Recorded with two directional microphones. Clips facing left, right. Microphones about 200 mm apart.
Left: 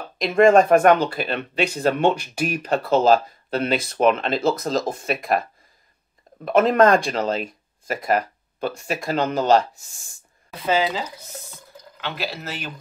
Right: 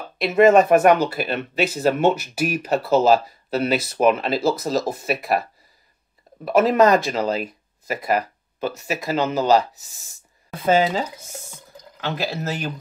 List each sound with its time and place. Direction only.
0.2 s speech: 5° right (ahead or behind)
10.6 s speech: 50° right (ahead or behind)